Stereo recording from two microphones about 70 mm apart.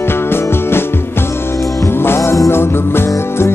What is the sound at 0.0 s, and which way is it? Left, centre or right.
Music, left.